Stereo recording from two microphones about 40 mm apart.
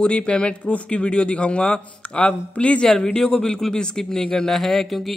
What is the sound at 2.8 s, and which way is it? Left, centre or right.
A man's voice, centre.